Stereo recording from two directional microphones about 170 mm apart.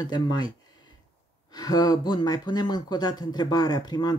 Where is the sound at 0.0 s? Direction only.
25° left (ahead or behind).